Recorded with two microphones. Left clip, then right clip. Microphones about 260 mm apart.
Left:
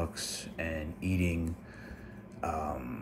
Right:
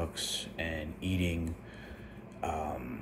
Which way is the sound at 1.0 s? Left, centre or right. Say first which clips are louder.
Left 1 dB; right.